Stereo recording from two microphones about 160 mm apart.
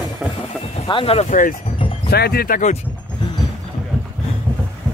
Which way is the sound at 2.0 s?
80° left.